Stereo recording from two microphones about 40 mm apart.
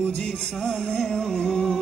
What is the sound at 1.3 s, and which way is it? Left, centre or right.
Music, left.